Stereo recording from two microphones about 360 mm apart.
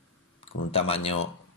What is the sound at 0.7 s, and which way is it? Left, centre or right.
Speech, centre.